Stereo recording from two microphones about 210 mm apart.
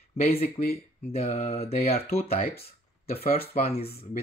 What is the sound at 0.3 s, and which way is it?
Speech, 45° left (ahead or behind).